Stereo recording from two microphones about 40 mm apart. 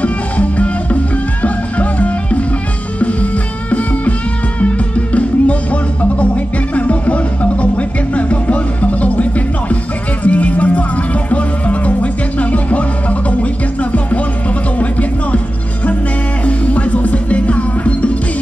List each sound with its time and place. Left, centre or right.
0.0 s music: left
4.6 s music: left
6.7 s music: left
14.8 s music: left
16.4 s music: left